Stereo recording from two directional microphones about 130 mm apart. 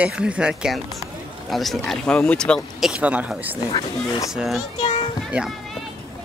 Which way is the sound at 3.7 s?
35° left (ahead or behind).